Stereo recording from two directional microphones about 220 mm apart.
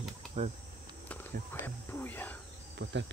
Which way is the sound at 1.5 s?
10° left (ahead or behind).